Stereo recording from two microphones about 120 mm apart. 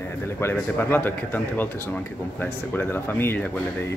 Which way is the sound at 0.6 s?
15° left (ahead or behind).